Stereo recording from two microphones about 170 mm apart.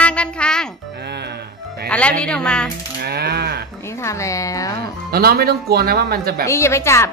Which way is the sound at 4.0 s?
15° left (ahead or behind).